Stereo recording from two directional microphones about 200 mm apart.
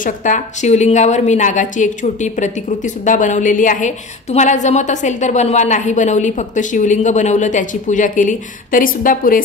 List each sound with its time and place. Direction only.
0.0 s a woman's voice: 40° left (ahead or behind)